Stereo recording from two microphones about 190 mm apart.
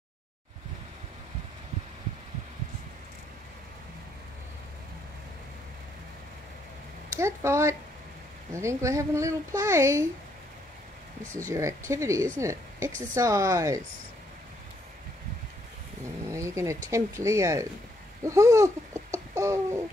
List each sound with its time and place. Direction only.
7.2 s speech: 15° right (ahead or behind)
11.3 s speech: 15° right (ahead or behind)
16.3 s speech: 15° right (ahead or behind)
19.1 s bird: 15° right (ahead or behind)